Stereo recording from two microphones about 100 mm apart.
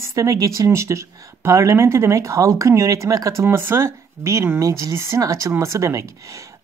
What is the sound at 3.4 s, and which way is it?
Speech, 20° right (ahead or behind).